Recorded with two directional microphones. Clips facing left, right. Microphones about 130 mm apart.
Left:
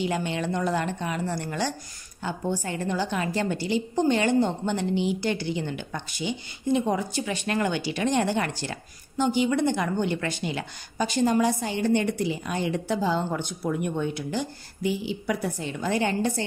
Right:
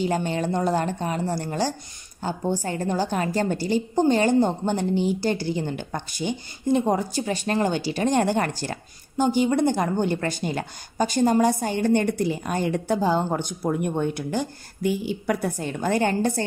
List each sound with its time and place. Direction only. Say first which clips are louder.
0.0 s a woman's voice: right 3 dB; 40° right (ahead or behind)